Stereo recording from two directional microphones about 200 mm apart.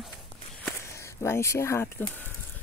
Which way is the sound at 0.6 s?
15° left (ahead or behind).